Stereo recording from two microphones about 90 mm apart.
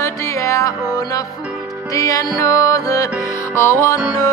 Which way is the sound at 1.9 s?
40° left (ahead or behind).